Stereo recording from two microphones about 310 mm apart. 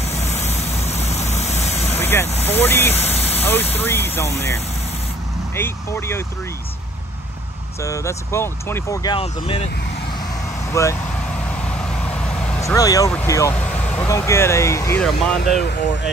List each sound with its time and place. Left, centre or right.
0.2 s vehicle: left
1.9 s vehicle: centre
2.4 s speech: centre
3.0 s vehicle: centre
3.7 s speech: centre
5.6 s speech: centre
7.8 s speech: centre
10.7 s vehicle: centre
15.6 s speech: left